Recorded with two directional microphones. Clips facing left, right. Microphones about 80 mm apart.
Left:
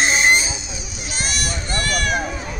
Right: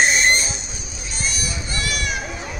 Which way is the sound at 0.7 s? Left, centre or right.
Left.